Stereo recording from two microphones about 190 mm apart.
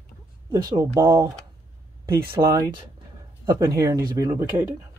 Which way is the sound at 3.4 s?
15° right (ahead or behind).